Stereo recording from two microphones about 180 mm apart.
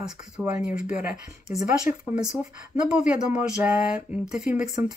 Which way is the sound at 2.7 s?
5° right (ahead or behind).